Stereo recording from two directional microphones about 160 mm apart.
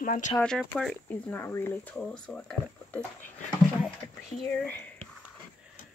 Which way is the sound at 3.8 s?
5° left (ahead or behind).